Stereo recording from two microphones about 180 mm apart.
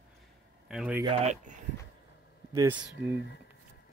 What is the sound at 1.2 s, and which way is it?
Speech, 40° right (ahead or behind).